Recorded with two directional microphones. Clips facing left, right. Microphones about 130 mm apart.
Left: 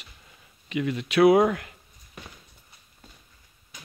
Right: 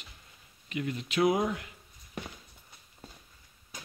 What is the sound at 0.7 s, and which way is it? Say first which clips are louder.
Speech: left 6 dB; 90° left.